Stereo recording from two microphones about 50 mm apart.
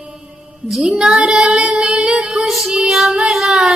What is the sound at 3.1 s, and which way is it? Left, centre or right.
Child singing, centre.